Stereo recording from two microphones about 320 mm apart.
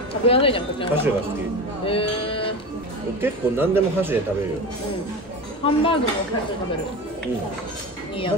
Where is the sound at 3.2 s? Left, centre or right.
Centre.